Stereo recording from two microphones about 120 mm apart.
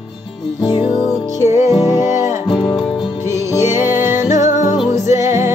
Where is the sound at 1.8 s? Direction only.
20° right (ahead or behind).